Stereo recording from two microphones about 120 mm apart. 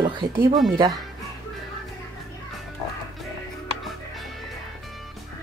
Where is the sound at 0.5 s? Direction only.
Centre (ahead or behind).